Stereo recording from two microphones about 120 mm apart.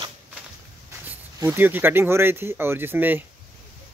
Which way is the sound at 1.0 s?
15° right (ahead or behind).